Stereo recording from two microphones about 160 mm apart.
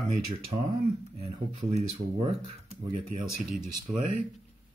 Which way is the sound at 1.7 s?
35° right (ahead or behind).